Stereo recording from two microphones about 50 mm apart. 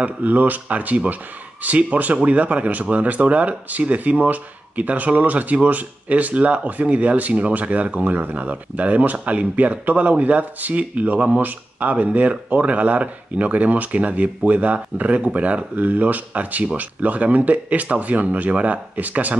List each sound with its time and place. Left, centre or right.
0.0 s speech: right